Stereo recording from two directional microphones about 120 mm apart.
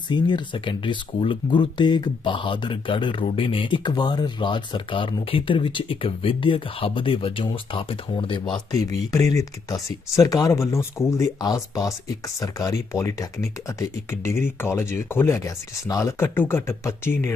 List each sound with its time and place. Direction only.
0.1 s speech: 40° left (ahead or behind)
8.7 s speech: 30° left (ahead or behind)